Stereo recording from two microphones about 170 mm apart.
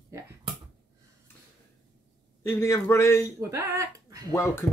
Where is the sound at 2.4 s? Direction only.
15° left (ahead or behind).